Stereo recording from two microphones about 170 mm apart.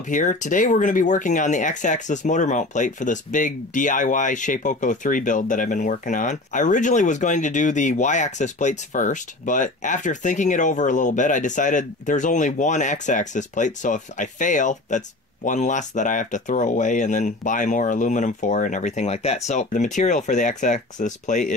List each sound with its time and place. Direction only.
0.1 s speech: 45° left (ahead or behind)